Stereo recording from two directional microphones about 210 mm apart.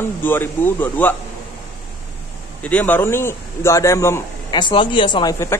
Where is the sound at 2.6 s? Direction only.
5° left (ahead or behind).